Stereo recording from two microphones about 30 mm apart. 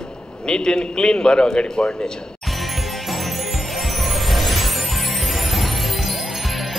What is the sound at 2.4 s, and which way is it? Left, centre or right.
Music, centre.